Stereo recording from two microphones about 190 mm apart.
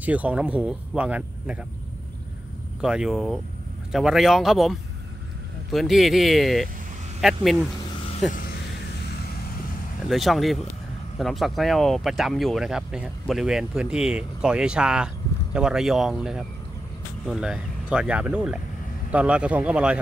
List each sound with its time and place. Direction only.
0.0 s speech: 10° right (ahead or behind)
2.8 s speech: 5° right (ahead or behind)
8.3 s a sound: 45° left (ahead or behind)
10.0 s speech: centre (ahead or behind)